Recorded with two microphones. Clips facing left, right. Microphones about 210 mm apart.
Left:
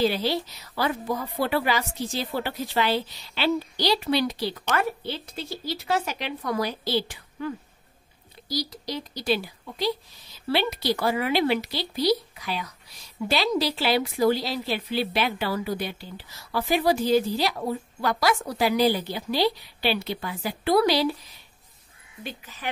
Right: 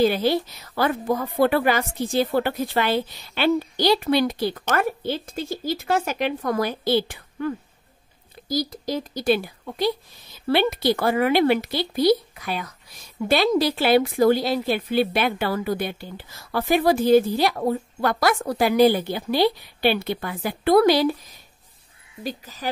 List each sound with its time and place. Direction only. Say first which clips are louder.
0.0 s speech: right 5 dB; 50° right (ahead or behind)
22.2 s speech: right 6 dB; 40° right (ahead or behind)